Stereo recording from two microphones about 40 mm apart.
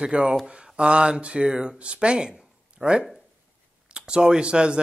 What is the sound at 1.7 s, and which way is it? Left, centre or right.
Speech, right.